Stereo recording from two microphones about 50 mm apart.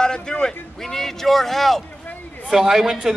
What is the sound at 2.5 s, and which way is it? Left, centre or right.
Speech, centre.